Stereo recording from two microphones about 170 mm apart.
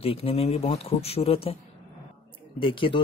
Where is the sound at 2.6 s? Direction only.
30° left (ahead or behind).